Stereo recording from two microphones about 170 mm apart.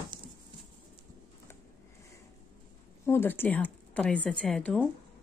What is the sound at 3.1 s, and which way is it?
A woman's voice, 15° left (ahead or behind).